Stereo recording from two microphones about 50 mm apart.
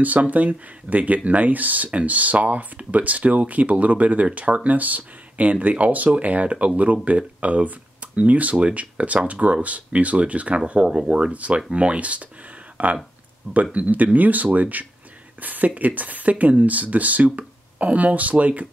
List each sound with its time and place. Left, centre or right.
0.0 s speech: right
10.9 s speech: centre